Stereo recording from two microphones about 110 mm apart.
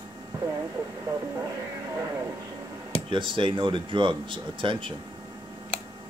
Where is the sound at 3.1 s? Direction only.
50° right (ahead or behind).